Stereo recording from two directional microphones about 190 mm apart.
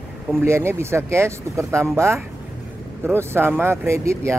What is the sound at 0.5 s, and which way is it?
Speech, 15° right (ahead or behind).